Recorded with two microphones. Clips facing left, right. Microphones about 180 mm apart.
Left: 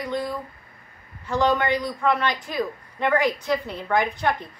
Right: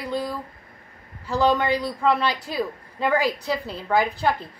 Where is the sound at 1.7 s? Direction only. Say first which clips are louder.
Right 1 dB; 30° right (ahead or behind).